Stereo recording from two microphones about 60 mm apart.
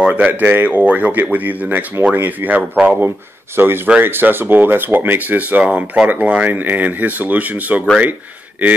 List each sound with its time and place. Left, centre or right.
0.0 s speech: right
5.6 s speech: centre